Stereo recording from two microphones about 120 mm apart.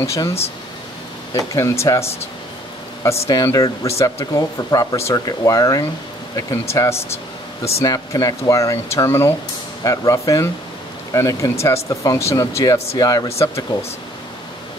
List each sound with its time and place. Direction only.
0.0 s speech: 25° left (ahead or behind)
3.3 s speech: 30° left (ahead or behind)